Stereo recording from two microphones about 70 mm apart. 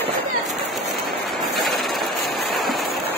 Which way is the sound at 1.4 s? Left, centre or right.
Centre.